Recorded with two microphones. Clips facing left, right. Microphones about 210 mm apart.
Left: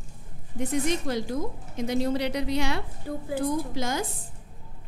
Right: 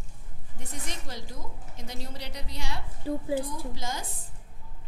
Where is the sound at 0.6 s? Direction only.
65° left (ahead or behind).